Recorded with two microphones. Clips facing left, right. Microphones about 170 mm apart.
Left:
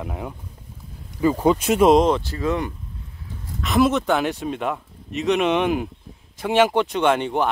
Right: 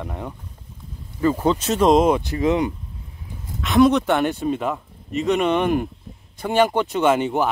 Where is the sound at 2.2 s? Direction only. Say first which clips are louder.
Right 4 dB; 20° right (ahead or behind).